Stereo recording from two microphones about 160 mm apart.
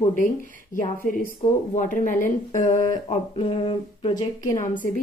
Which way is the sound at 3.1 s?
35° left (ahead or behind).